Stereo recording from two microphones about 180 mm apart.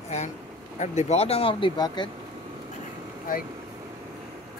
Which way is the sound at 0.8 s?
40° left (ahead or behind).